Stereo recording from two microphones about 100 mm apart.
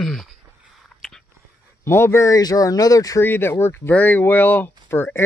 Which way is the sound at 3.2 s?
20° left (ahead or behind).